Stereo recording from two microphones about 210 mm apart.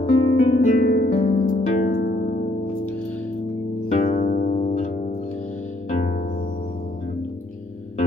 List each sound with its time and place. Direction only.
0.1 s music: 45° left (ahead or behind)
0.5 s harp: 40° left (ahead or behind)
3.9 s music: 35° left (ahead or behind)